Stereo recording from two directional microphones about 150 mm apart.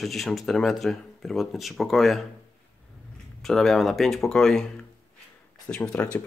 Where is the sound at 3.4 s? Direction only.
Centre (ahead or behind).